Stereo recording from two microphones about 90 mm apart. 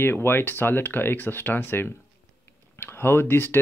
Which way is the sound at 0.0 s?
25° left (ahead or behind).